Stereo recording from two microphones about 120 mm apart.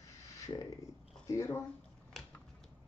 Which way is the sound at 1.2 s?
25° left (ahead or behind).